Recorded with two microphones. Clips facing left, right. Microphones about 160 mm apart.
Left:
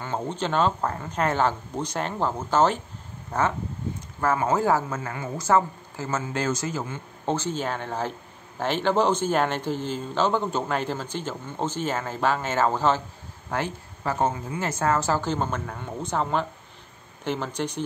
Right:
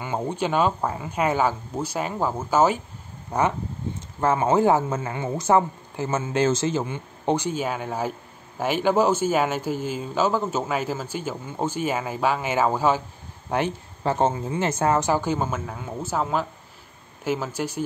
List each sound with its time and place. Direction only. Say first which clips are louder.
0.0 s a man's voice: right 2 dB; 10° right (ahead or behind)
13.5 s a man's voice: right 4 dB; 25° right (ahead or behind); by 17.8 s 5° right (ahead or behind)